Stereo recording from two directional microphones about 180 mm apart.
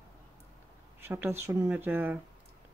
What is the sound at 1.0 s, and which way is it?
Speech, 15° right (ahead or behind).